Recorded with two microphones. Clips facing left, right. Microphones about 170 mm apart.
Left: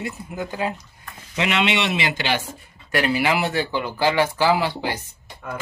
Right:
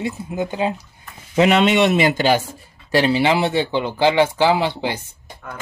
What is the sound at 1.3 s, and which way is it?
Speech, 40° right (ahead or behind).